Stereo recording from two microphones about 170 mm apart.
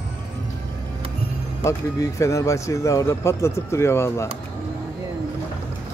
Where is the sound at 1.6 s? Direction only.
20° left (ahead or behind).